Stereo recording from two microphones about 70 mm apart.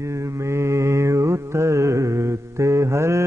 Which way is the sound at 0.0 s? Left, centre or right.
Right.